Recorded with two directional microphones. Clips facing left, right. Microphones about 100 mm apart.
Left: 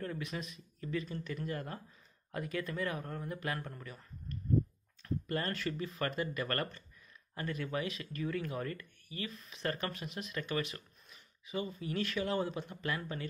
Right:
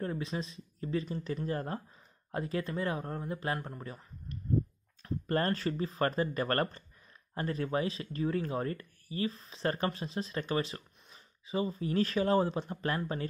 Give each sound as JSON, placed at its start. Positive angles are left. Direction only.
{"t": 0.0, "sound": "speech", "side_deg": -30}
{"t": 5.2, "sound": "speech", "side_deg": -40}